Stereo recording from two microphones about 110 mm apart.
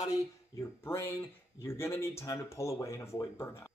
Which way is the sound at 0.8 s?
20° left (ahead or behind).